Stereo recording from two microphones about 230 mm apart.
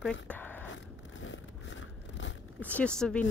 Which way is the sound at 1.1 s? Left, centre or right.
Left.